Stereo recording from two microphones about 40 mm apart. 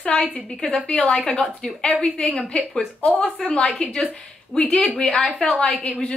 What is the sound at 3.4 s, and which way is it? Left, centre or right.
Speech, left.